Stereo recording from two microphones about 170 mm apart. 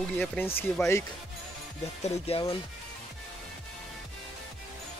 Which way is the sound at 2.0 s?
35° left (ahead or behind).